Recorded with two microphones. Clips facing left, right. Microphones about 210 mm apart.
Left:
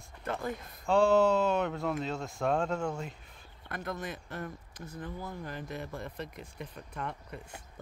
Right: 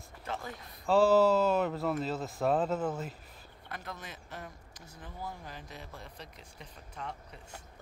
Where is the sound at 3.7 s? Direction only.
50° left (ahead or behind).